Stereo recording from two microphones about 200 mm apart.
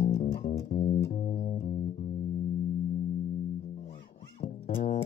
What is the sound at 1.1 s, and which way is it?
Bass guitar, 40° left (ahead or behind).